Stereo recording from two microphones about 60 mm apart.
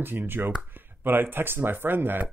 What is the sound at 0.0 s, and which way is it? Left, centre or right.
Speech, right.